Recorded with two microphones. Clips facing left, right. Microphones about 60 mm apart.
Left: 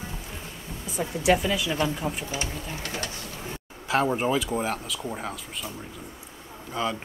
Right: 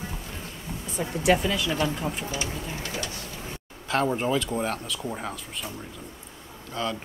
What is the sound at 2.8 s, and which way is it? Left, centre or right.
Speech, left.